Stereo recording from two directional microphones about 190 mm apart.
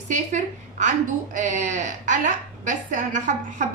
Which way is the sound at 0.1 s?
40° right (ahead or behind).